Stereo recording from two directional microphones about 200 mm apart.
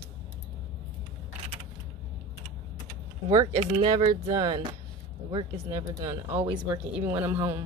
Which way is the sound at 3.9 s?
15° right (ahead or behind).